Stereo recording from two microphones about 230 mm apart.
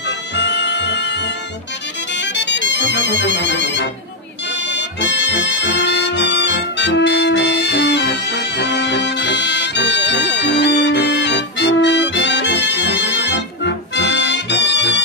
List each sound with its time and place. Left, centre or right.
0.4 s music: left